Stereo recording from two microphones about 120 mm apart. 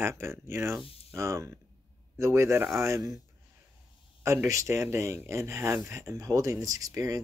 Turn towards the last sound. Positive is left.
turn(degrees=-30)  # may be behind; listen again after turning